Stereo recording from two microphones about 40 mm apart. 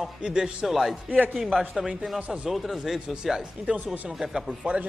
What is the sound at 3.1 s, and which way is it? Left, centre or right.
Speech, centre.